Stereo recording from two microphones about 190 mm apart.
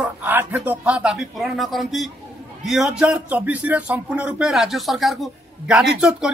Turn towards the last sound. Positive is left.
turn(degrees=-5)  # may be behind; listen again after turning